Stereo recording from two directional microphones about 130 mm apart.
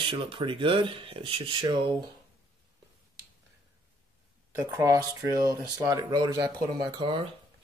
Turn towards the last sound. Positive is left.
turn(degrees=-40)  # may be behind; listen again after turning